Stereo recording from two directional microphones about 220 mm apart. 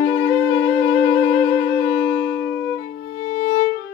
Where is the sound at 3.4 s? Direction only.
30° left (ahead or behind).